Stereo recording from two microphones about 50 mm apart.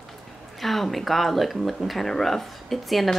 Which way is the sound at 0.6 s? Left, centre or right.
Centre.